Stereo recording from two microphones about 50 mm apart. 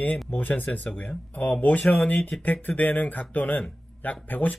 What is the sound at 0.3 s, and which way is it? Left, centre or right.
Speech, left.